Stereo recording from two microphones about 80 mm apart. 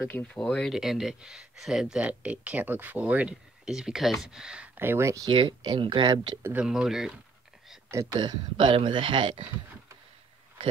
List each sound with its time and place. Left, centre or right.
0.0 s speech: left
0.3 s speech: centre
0.7 s speech: centre
3.6 s speech: centre
4.7 s speech: right
5.3 s speech: right
6.5 s speech: centre
8.1 s speech: right